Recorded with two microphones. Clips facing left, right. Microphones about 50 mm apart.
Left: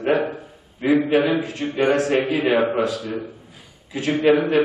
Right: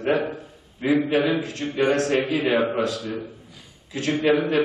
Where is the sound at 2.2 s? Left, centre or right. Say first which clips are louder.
Left 3 dB; centre.